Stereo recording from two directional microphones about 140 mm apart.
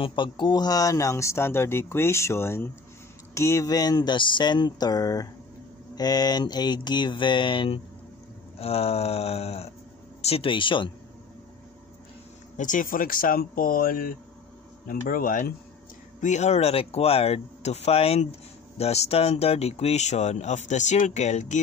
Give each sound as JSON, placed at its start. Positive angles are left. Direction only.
{"t": 0.0, "sound": "speech", "side_deg": 35}
{"t": 5.9, "sound": "mantra", "side_deg": 30}
{"t": 8.5, "sound": "speech", "side_deg": 45}
{"t": 10.2, "sound": "mantra", "side_deg": 40}
{"t": 12.5, "sound": "speech", "side_deg": 65}
{"t": 16.2, "sound": "speech", "side_deg": 55}